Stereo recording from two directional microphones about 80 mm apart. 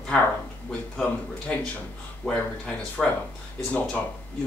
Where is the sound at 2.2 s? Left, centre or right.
Centre.